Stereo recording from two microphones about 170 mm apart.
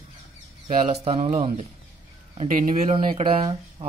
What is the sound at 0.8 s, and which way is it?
Speech, 40° right (ahead or behind).